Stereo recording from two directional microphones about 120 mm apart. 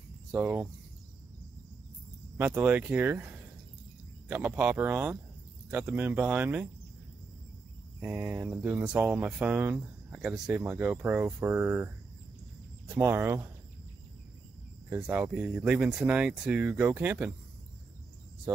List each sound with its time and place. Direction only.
0.3 s speech: 10° right (ahead or behind)
2.3 s speech: 15° right (ahead or behind)
8.0 s speech: 15° right (ahead or behind)
15.0 s speech: 10° right (ahead or behind)